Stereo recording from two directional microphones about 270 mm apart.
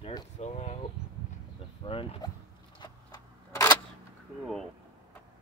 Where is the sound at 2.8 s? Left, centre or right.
Centre.